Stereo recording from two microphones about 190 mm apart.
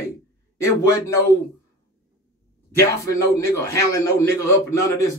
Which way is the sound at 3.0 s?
15° left (ahead or behind).